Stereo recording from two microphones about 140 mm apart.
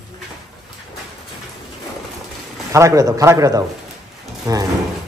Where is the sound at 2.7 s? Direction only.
20° right (ahead or behind).